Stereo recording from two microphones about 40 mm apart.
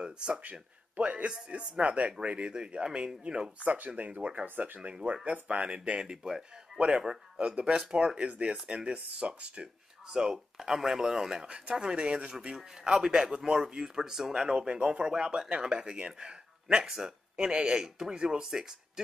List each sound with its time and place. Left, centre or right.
0.0 s speech: right
0.4 s speech: right
1.8 s speech: right
3.7 s speech: right
6.0 s a man's voice: centre
10.0 s a man's voice: centre
11.4 s a man's voice: right